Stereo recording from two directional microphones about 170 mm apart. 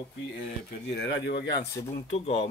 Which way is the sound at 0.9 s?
90° left.